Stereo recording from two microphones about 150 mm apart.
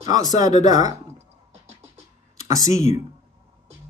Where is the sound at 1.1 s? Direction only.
45° right (ahead or behind).